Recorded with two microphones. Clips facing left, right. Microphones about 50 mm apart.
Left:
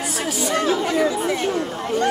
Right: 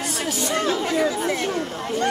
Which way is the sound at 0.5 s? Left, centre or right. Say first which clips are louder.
Left 3 dB; centre.